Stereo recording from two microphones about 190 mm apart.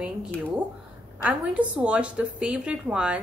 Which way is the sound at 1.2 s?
5° right (ahead or behind).